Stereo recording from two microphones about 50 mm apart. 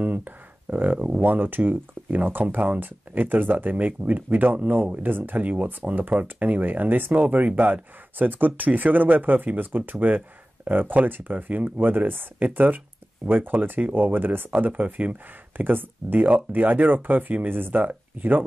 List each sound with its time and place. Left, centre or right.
0.0 s speech: right